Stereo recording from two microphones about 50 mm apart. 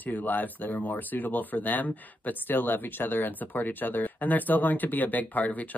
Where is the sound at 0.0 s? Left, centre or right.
Left.